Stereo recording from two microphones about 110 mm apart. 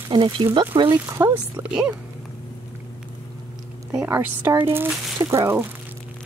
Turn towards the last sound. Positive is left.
turn(degrees=-20)  # may be behind; listen again after turning